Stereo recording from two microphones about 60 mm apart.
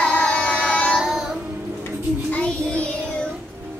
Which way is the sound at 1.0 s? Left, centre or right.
Centre.